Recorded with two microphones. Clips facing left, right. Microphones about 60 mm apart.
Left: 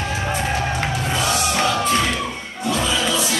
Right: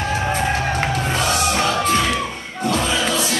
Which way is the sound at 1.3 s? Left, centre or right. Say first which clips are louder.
Right 2 dB; centre.